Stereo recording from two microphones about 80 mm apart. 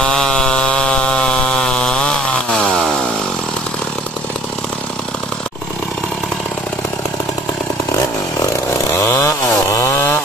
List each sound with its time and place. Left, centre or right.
0.0 s chainsaw: centre
8.9 s chainsaw: left